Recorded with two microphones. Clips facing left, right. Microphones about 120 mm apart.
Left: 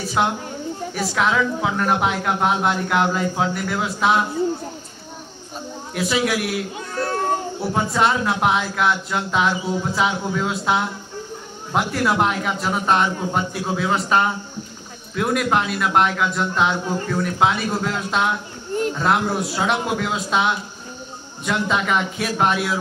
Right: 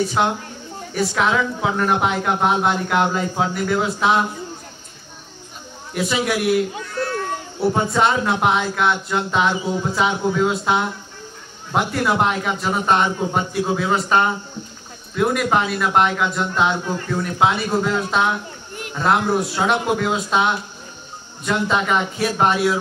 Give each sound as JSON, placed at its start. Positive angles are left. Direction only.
{"t": 0.2, "sound": "a woman's voice", "side_deg": 5}
{"t": 5.9, "sound": "a woman's voice", "side_deg": 0}
{"t": 6.8, "sound": "children playing", "side_deg": 40}
{"t": 7.7, "sound": "a woman's voice", "side_deg": 0}